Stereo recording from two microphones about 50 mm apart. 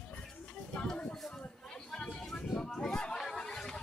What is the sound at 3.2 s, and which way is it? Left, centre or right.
Chatter, centre.